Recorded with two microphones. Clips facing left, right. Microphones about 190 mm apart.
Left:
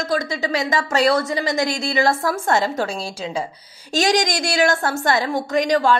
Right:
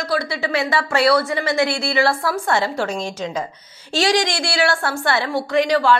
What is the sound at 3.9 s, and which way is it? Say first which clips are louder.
A woman's voice: even; 40° left (ahead or behind).